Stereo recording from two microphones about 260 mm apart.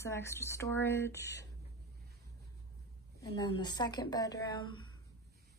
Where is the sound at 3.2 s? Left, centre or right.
Centre.